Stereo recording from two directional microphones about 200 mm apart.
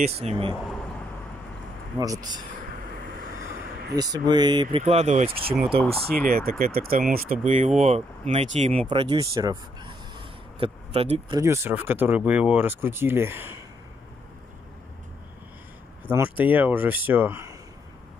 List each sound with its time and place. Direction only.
0.0 s speech: 30° right (ahead or behind)
2.0 s speech: 20° right (ahead or behind)
3.9 s speech: 20° right (ahead or behind)
4.8 s speech: 35° right (ahead or behind)
6.0 s speech: 45° right (ahead or behind); by 13.5 s 10° right (ahead or behind)
16.1 s speech: 10° right (ahead or behind)